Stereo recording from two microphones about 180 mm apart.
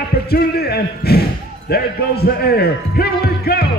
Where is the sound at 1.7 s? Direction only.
60° left (ahead or behind).